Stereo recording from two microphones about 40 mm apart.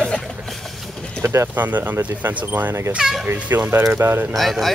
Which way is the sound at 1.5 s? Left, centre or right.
Right.